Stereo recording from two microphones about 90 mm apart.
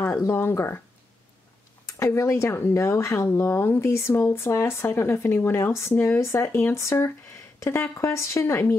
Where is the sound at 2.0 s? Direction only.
30° left (ahead or behind).